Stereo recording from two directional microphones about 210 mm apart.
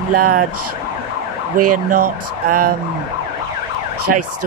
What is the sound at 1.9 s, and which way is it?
Speech, 40° right (ahead or behind).